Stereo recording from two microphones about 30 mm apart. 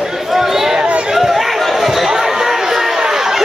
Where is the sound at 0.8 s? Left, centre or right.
Right.